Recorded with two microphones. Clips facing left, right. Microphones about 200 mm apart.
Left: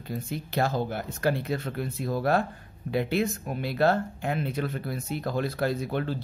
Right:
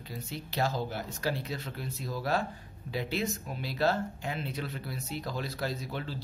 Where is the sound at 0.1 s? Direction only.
55° left (ahead or behind).